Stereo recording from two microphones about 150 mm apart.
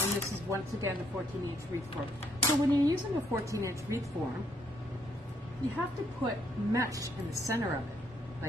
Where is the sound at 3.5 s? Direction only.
20° right (ahead or behind).